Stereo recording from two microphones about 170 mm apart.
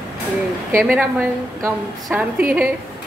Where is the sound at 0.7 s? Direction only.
10° right (ahead or behind).